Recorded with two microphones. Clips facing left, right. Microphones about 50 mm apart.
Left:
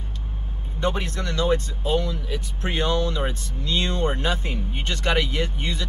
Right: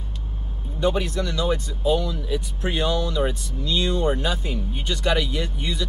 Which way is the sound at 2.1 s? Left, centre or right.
Centre.